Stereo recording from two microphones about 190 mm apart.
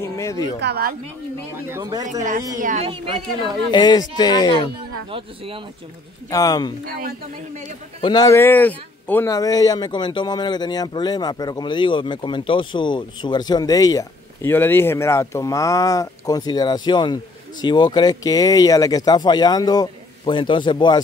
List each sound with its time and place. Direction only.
0.0 s speech: 15° left (ahead or behind)
0.6 s speech: 55° right (ahead or behind)
1.7 s speech: 20° right (ahead or behind)
2.6 s speech: 35° right (ahead or behind)
3.7 s speech: 20° left (ahead or behind)
5.1 s speech: 30° right (ahead or behind)
6.3 s speech: 20° left (ahead or behind)
6.9 s speech: 50° right (ahead or behind)
8.0 s speech: 20° left (ahead or behind)